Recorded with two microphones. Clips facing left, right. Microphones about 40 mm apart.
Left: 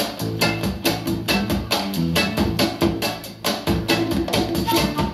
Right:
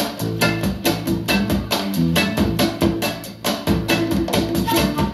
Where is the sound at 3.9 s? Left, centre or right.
Right.